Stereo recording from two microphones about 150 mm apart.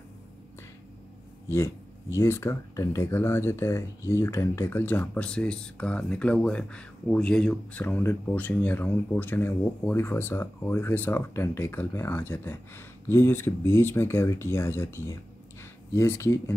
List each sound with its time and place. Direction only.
1.5 s speech: 20° left (ahead or behind)